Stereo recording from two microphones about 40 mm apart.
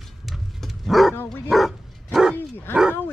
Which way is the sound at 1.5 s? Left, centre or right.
Centre.